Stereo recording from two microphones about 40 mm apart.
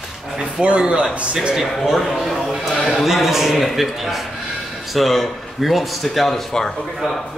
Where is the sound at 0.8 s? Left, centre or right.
Right.